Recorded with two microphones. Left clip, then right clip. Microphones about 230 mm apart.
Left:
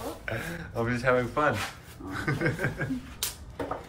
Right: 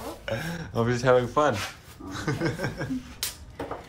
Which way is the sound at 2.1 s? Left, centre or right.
Centre.